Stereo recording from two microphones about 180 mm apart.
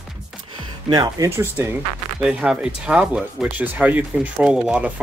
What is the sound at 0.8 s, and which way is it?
Speech, 20° right (ahead or behind).